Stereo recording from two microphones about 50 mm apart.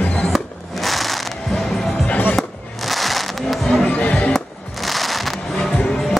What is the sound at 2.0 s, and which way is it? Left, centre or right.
Music, left.